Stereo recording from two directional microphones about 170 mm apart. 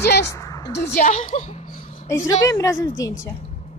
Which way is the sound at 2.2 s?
20° left (ahead or behind).